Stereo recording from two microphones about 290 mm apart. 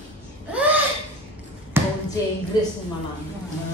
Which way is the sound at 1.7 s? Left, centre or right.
Centre.